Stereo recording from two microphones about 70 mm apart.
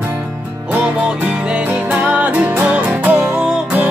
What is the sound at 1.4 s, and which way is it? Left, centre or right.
Music, centre.